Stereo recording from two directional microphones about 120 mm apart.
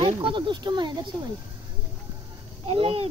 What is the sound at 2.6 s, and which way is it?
Speech, 55° right (ahead or behind).